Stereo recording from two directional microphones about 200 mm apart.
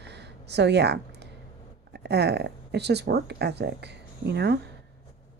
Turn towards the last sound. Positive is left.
turn(degrees=-55)  # may be behind; listen again after turning